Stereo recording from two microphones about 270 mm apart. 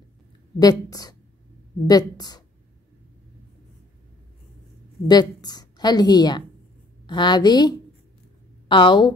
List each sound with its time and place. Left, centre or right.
0.6 s a woman's voice: centre
5.0 s a woman's voice: centre